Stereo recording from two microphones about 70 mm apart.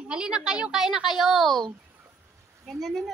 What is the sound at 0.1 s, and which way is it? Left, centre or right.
A woman's voice, centre.